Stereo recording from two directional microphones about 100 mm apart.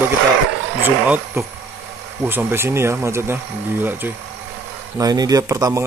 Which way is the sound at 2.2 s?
25° right (ahead or behind).